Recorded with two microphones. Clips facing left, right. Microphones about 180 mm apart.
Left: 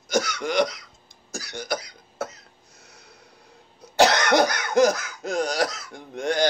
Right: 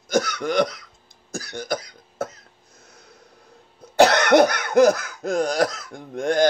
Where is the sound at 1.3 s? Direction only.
50° right (ahead or behind).